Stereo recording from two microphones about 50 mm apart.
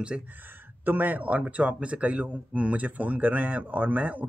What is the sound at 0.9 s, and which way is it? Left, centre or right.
Speech, right.